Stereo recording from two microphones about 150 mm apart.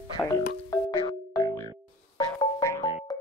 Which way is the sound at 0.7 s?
25° left (ahead or behind).